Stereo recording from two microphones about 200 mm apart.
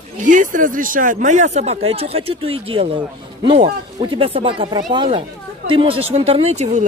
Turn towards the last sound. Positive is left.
turn(degrees=-35)  # may be behind; listen again after turning